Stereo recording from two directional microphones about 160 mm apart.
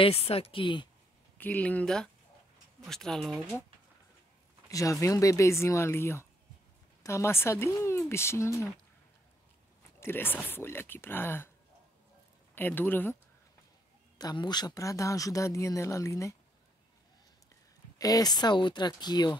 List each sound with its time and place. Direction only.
0.0 s speech: 40° left (ahead or behind)
1.4 s speech: 10° left (ahead or behind)
4.6 s speech: 20° left (ahead or behind)
9.9 s speech: 15° left (ahead or behind)
12.5 s speech: 10° left (ahead or behind)
14.1 s speech: 25° left (ahead or behind)
17.9 s speech: 20° left (ahead or behind)